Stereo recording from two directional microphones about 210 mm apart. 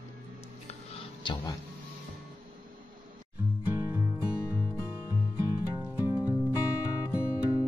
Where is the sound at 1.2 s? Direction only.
20° left (ahead or behind).